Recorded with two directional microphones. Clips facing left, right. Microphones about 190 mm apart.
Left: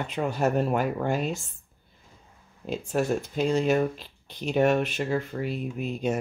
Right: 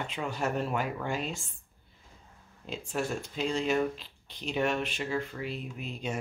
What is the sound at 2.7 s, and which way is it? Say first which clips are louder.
Speech: left 7 dB; 45° left (ahead or behind).